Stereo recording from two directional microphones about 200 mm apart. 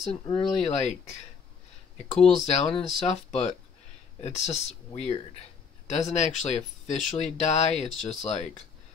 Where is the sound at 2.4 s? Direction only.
35° left (ahead or behind).